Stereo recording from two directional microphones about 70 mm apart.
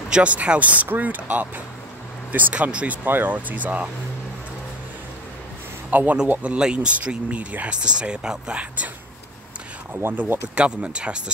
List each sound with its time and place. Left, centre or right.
0.1 s speech: centre
5.9 s speech: right
9.9 s speech: right